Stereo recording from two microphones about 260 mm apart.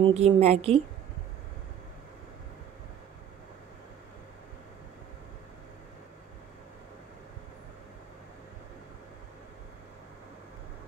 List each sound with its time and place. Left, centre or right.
0.0 s a woman's voice: right